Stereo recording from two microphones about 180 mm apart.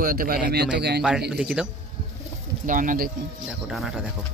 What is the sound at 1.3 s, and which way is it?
Speech, 5° right (ahead or behind).